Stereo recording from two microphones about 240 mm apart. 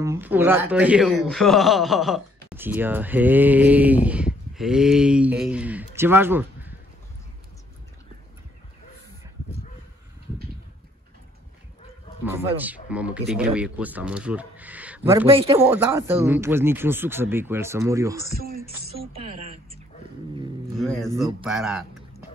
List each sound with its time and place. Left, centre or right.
0.0 s speech: centre
12.3 s speech: centre
15.2 s a woman's voice: right
15.6 s speech: centre
19.1 s a woman's voice: right
20.8 s speech: centre